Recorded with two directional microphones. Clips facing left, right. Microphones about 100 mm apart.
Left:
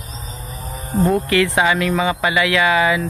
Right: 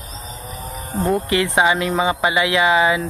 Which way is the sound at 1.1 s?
20° right (ahead or behind).